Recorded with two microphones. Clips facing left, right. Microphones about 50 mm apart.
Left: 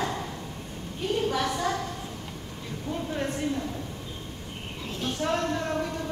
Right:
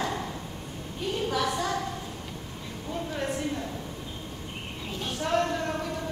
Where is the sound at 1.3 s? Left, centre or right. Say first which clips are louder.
Left 1 dB; centre.